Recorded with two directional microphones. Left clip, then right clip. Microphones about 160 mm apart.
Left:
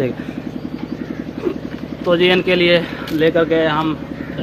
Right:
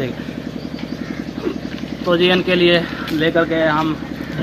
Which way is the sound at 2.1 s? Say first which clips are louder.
Left 1 dB; 30° left (ahead or behind).